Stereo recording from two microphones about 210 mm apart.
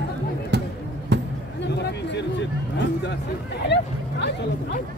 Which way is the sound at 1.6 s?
55° left (ahead or behind).